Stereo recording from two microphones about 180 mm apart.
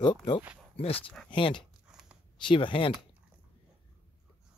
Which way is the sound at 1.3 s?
30° left (ahead or behind).